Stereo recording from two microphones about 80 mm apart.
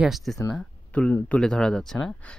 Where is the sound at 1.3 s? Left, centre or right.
Centre.